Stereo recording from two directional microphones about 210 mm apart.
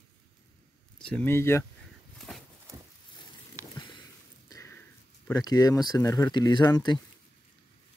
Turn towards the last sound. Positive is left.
turn(degrees=20)  # may be behind; listen again after turning